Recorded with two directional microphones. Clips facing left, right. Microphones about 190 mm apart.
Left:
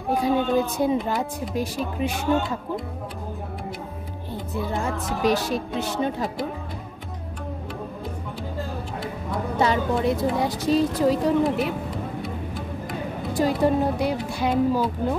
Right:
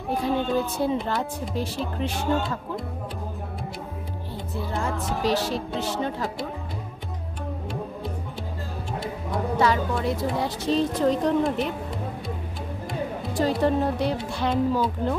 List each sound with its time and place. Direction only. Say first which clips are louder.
0.2 s a woman's voice: left 3 dB; 15° left (ahead or behind)
4.6 s a woman's voice: left 2 dB; 15° left (ahead or behind)
9.6 s a woman's voice: left 2 dB; 20° left (ahead or behind); by 11.7 s 5° left (ahead or behind)
13.3 s a woman's voice: left 2 dB; 10° left (ahead or behind)